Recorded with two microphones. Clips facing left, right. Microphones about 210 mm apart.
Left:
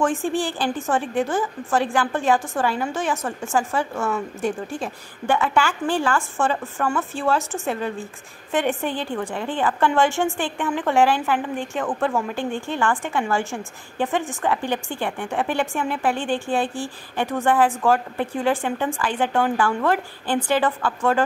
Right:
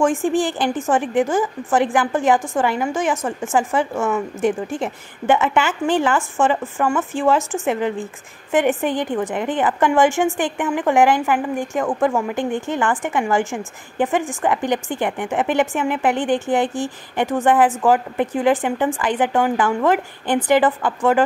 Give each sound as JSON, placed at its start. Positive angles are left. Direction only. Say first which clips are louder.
{"t": 0.0, "sound": "a woman's voice", "louder": "right 4 dB", "side_deg": -15}